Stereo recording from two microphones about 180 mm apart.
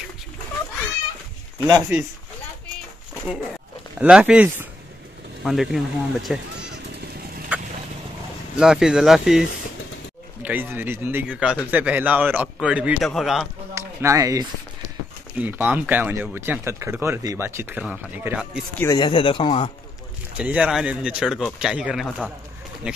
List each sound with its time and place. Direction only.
1.7 s speech: 5° right (ahead or behind)
4.0 s speech: 5° right (ahead or behind)
8.5 s speech: 5° right (ahead or behind)
13.7 s speech: 15° right (ahead or behind)
18.8 s speech: 20° left (ahead or behind)
20.3 s speech: 5° right (ahead or behind)